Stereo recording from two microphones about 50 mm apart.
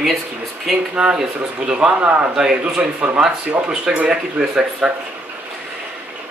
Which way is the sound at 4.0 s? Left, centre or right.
Right.